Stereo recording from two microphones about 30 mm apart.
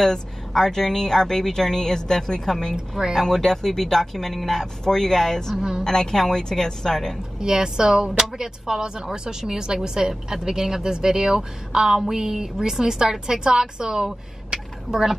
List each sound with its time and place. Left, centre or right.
0.0 s speech: centre
5.6 s speech: right
5.9 s a woman's voice: centre
7.3 s speech: right